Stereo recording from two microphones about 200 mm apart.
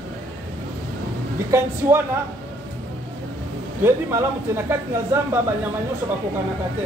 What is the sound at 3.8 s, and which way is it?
Speech, 10° right (ahead or behind).